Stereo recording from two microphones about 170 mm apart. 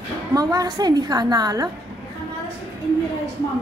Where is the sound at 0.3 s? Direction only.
20° right (ahead or behind).